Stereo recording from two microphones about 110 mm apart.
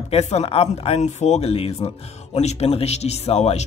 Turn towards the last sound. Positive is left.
turn(degrees=70)  # may be behind; listen again after turning